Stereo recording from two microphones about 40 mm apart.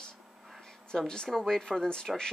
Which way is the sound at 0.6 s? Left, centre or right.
Centre.